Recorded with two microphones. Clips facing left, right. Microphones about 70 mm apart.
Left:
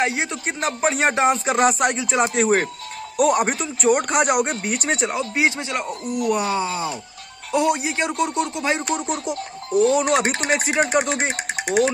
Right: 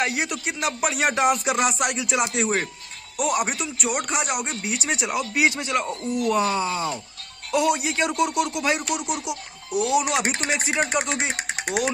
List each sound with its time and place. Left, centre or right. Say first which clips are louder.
0.0 s speech: left 2 dB; left
4.8 s speech: left 2 dB; left
10.5 s speech: left 5 dB; left